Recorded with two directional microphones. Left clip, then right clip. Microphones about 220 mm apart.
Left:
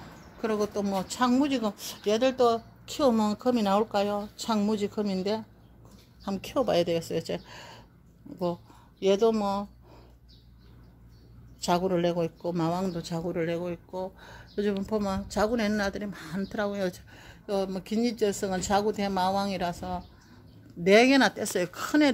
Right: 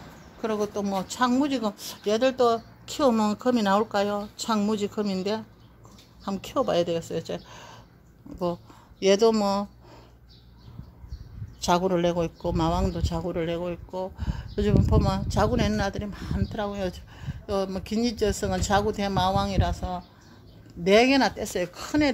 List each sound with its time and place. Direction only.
0.4 s a man's voice: 10° left (ahead or behind)
9.0 s speech: 10° right (ahead or behind)
11.6 s a man's voice: 5° right (ahead or behind); by 22.1 s 20° left (ahead or behind)